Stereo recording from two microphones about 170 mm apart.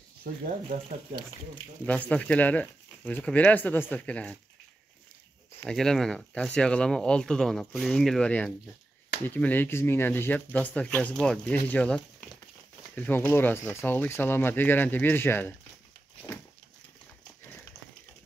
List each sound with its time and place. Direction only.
0.3 s speech: 60° right (ahead or behind)
1.9 s speech: 5° left (ahead or behind)
5.7 s speech: 5° left (ahead or behind)